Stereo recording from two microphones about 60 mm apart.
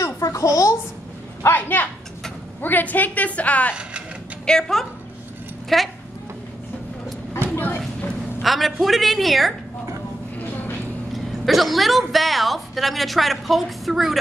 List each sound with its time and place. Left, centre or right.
0.0 s a sound: left
1.5 s a woman's voice: left
4.5 s a woman's voice: centre
7.5 s a sound: left
8.4 s a woman's voice: centre
11.1 s a woman's voice: centre